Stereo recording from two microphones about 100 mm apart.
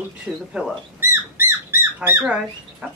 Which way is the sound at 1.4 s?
25° right (ahead or behind).